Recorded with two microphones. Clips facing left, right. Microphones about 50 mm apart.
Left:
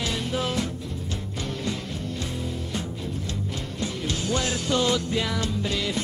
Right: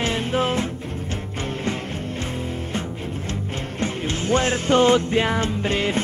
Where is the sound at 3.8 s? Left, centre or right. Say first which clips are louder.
Right 4 dB; right.